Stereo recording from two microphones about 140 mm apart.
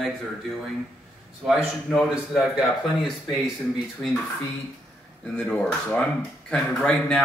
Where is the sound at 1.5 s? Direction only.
5° right (ahead or behind).